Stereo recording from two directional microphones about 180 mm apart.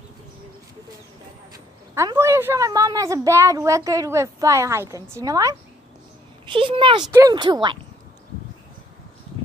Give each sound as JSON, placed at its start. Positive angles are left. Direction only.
{"t": 2.0, "sound": "a woman's voice", "side_deg": -15}
{"t": 7.1, "sound": "speech", "side_deg": -15}